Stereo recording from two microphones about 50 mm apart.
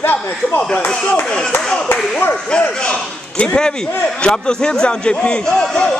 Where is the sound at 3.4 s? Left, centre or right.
Centre.